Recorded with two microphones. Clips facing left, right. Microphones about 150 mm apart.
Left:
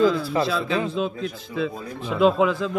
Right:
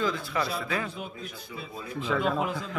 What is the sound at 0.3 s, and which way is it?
Speech, 30° left (ahead or behind).